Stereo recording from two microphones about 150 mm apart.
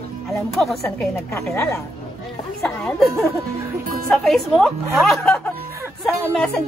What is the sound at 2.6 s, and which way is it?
Speech, 5° left (ahead or behind).